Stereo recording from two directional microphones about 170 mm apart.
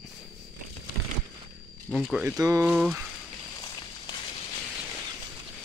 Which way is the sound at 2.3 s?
20° right (ahead or behind).